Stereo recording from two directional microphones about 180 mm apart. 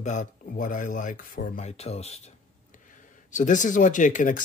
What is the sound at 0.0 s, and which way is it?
Speech, 45° left (ahead or behind).